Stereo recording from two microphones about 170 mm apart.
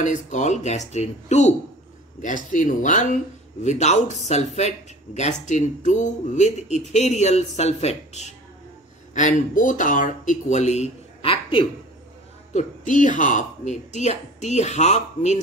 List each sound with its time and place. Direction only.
0.0 s speech: 45° left (ahead or behind)
12.5 s speech: 45° left (ahead or behind)